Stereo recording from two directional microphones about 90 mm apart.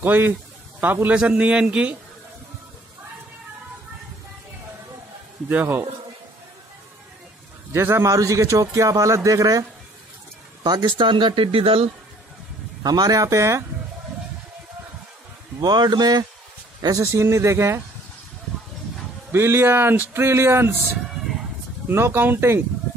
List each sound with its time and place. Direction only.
0.0 s a man's voice: 20° right (ahead or behind)
5.5 s speech: 20° right (ahead or behind)
7.7 s a man's voice: 30° right (ahead or behind)
10.6 s speech: 55° right (ahead or behind); by 11.9 s 90° right
12.8 s a man's voice: 45° right (ahead or behind)
15.6 s speech: 50° right (ahead or behind)
17.0 s a man's voice: 30° right (ahead or behind)
19.3 s speech: 25° right (ahead or behind)
21.8 s speech: 25° right (ahead or behind)